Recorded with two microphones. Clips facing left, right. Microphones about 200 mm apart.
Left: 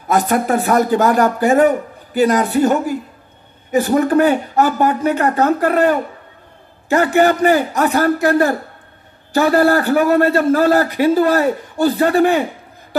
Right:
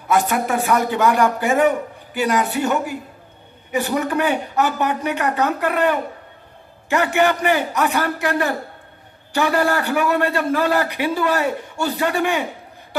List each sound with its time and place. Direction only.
0.1 s a man's voice: 40° left (ahead or behind)